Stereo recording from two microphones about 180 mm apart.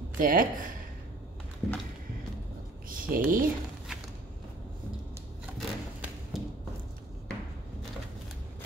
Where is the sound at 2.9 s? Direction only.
50° right (ahead or behind).